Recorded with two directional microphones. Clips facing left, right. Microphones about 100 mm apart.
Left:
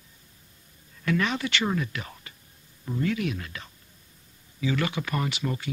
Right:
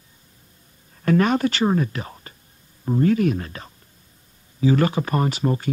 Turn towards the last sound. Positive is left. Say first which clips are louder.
# right 7 dB
turn(degrees=-40)  # may be behind; listen again after turning